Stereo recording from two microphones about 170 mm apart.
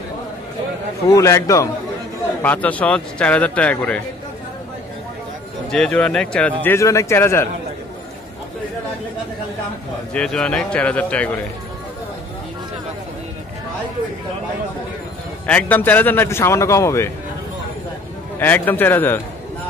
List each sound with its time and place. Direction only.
1.0 s a man's voice: 20° left (ahead or behind)
5.7 s a man's voice: 5° left (ahead or behind)
10.1 s a man's voice: 5° left (ahead or behind)
15.4 s a man's voice: 10° left (ahead or behind)
18.4 s a man's voice: 10° left (ahead or behind)